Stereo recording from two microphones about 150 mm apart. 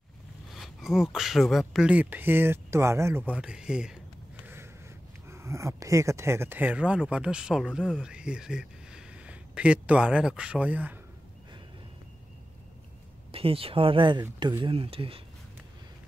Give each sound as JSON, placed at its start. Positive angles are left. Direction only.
{"t": 0.5, "sound": "speech", "side_deg": 0}
{"t": 5.3, "sound": "speech", "side_deg": -20}
{"t": 13.3, "sound": "speech", "side_deg": -40}